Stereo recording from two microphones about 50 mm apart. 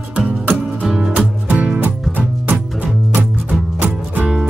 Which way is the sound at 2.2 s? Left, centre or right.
Right.